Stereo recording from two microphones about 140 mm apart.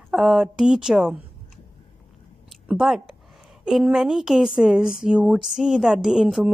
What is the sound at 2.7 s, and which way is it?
Speech, 5° right (ahead or behind).